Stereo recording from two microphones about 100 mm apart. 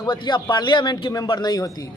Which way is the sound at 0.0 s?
50° left (ahead or behind).